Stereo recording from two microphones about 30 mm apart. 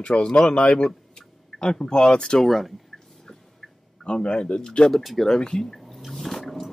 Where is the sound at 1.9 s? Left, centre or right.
Left.